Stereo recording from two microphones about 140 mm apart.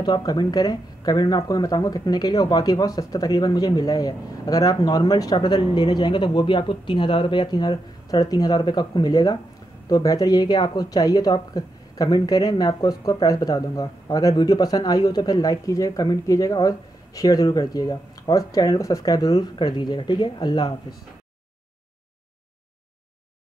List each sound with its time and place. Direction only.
0.0 s speech: 30° left (ahead or behind)